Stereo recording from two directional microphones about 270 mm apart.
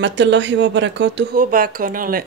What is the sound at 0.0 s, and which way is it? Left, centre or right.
Speech, right.